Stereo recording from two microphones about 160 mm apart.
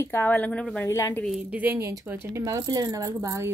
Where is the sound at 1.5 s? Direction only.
10° right (ahead or behind).